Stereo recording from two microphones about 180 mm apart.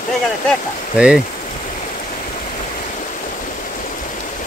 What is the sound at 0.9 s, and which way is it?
Speech, 5° right (ahead or behind).